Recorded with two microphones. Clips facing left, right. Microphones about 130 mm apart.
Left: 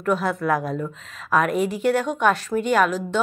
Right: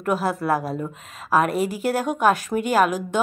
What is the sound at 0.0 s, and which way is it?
Speech, 10° right (ahead or behind).